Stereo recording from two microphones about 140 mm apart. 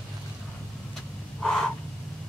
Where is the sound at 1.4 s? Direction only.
5° left (ahead or behind).